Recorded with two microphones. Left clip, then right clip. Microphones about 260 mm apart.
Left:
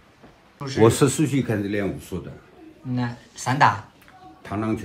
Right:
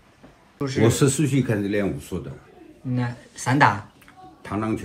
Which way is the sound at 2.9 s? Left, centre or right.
Centre.